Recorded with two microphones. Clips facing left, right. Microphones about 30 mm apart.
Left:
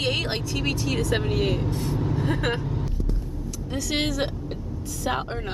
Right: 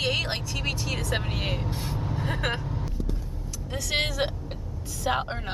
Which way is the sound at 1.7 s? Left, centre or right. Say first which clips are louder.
Left 5 dB; centre.